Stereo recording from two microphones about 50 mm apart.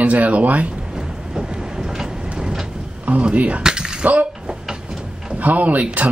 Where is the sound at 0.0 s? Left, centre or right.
Right.